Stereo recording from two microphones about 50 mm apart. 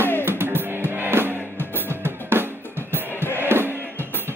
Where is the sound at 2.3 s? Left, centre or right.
Right.